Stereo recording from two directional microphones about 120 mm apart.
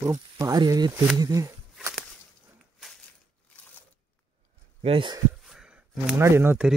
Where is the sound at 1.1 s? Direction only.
30° right (ahead or behind).